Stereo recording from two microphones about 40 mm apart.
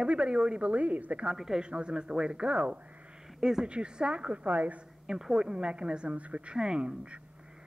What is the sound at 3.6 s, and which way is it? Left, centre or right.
A woman's voice, right.